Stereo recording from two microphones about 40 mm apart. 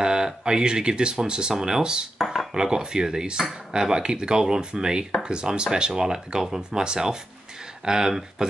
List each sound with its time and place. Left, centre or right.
0.0 s speech: centre
2.1 s dishes: centre
2.5 s speech: centre